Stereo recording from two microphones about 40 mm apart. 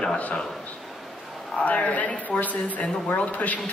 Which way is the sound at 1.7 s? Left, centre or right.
Left.